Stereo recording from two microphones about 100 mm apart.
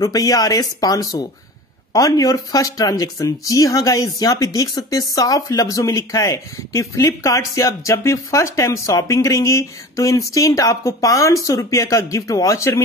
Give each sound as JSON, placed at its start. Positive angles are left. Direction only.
{"t": 0.0, "sound": "speech", "side_deg": 35}